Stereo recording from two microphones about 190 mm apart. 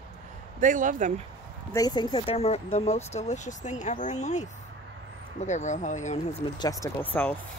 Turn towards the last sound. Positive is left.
turn(degrees=10)  # may be behind; listen again after turning